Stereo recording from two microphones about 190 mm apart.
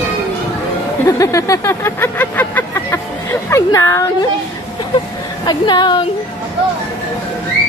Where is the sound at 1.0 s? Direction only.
15° left (ahead or behind).